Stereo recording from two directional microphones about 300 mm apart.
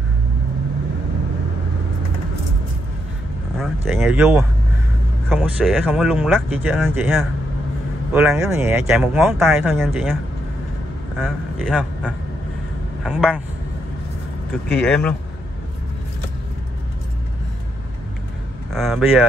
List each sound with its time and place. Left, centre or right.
3.5 s speech: centre
11.1 s speech: centre
14.5 s speech: centre
18.7 s speech: centre